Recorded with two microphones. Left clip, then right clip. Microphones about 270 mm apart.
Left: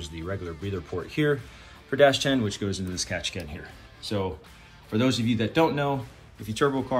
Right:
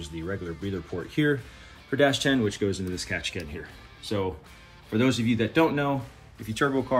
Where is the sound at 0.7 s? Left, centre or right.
Left.